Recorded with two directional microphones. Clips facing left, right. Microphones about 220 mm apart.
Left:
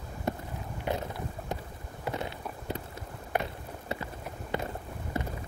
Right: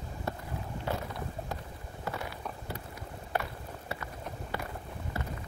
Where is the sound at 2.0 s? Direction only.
20° left (ahead or behind).